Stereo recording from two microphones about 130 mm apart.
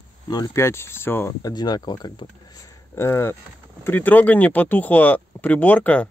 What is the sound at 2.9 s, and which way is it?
Speech, 20° left (ahead or behind).